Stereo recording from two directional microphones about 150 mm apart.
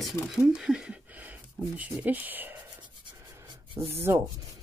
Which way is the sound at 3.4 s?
30° right (ahead or behind).